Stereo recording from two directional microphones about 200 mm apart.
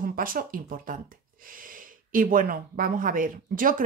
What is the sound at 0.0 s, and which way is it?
Speech, 45° right (ahead or behind).